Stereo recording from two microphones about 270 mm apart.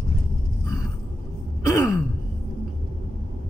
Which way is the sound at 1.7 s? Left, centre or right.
Centre.